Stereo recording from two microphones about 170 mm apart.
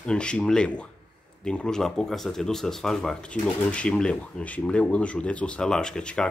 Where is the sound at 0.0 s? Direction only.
5° left (ahead or behind).